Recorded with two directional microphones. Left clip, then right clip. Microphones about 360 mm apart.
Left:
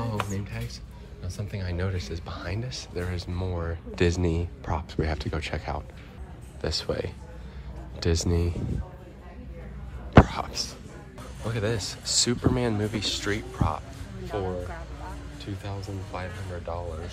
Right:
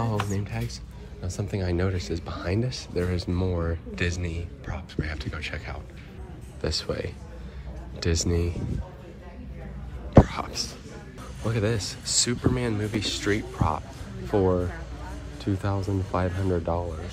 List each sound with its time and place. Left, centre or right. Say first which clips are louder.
0.0 s music: right 2 dB; centre
1.2 s speech: right 7 dB; centre
10.2 s speech: even; centre
15.3 s speech: right 11 dB; centre